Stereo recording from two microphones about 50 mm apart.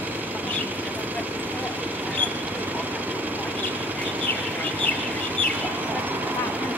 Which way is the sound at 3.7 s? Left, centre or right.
Right.